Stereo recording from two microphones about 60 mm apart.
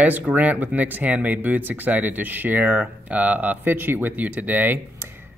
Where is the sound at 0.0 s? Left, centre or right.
Right.